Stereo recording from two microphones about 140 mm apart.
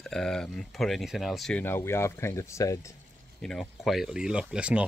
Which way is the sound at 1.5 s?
15° left (ahead or behind).